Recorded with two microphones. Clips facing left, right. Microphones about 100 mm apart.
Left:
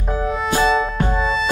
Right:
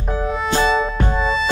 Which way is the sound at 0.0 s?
Centre (ahead or behind).